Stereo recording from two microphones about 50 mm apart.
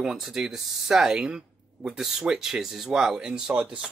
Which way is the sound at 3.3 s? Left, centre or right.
Right.